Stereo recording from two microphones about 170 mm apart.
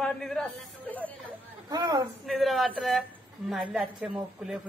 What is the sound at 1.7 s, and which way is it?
Speech, 25° right (ahead or behind).